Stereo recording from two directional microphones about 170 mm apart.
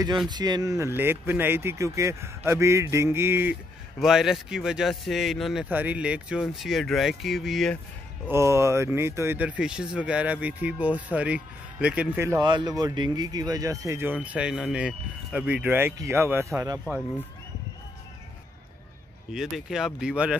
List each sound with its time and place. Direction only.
0.3 s speech: 25° right (ahead or behind)
4.0 s speech: centre (ahead or behind)
8.3 s speech: 15° right (ahead or behind)
19.3 s speech: centre (ahead or behind)